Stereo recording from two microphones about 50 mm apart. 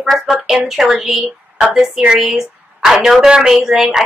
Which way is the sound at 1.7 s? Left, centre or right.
Centre.